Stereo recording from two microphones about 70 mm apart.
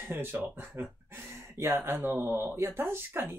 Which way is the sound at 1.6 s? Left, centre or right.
Right.